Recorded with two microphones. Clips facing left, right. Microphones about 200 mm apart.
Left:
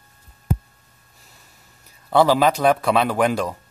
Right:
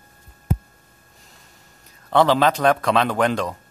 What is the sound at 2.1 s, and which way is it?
A man's voice, 10° left (ahead or behind).